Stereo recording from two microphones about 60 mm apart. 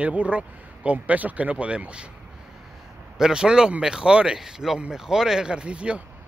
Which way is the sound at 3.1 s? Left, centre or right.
Centre.